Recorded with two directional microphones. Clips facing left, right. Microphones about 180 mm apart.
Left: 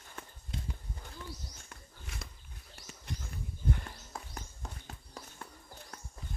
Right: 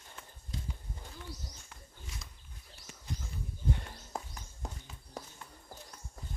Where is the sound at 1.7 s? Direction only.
60° left (ahead or behind).